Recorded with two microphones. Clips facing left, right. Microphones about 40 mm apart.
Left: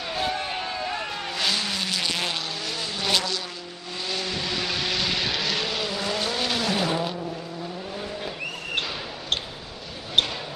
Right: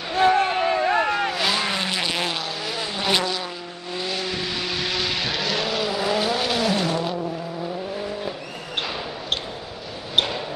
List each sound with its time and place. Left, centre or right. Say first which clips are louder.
0.2 s a sound: right 12 dB; right
1.3 s vehicle: right 3 dB; centre
1.6 s vehicle: right 4 dB; right
4.0 s vehicle: right 2 dB; centre